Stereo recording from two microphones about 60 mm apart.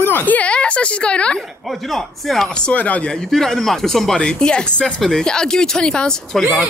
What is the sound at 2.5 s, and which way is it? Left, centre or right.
Speech, centre.